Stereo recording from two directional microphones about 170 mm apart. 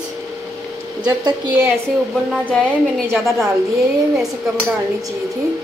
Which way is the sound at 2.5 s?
5° left (ahead or behind).